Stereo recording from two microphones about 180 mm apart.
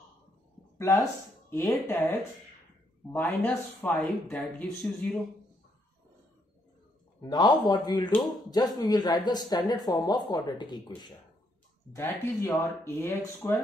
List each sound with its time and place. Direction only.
0.7 s speech: 20° left (ahead or behind)
7.2 s speech: 25° left (ahead or behind)